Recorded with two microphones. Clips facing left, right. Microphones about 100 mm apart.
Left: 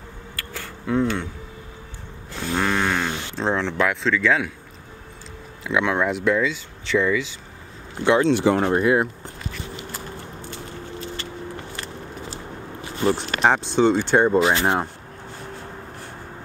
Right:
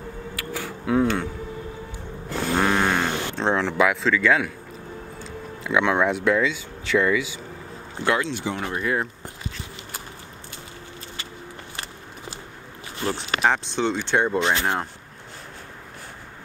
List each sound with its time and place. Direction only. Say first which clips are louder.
0.4 s a sound: right 3 dB; 10° right (ahead or behind)
2.5 s a sound: right 1 dB; 10° right (ahead or behind)
3.3 s speech: right 1 dB; centre (ahead or behind)
5.7 s speech: right 1 dB; centre (ahead or behind)
8.3 s speech: left 11 dB; 70° left (ahead or behind)
8.5 s speech: left 9 dB; 40° left (ahead or behind)
8.8 s speech: left 2 dB; 10° left (ahead or behind)
13.0 s speech: left 3 dB; 5° left (ahead or behind)